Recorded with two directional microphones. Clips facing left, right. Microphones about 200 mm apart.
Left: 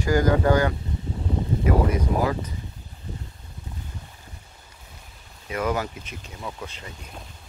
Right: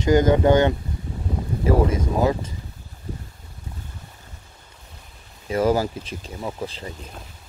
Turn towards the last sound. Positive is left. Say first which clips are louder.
# right 6 dB
turn(degrees=-35)  # may be behind; listen again after turning